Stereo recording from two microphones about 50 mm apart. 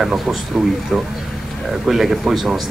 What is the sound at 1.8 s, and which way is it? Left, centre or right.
Speech, centre.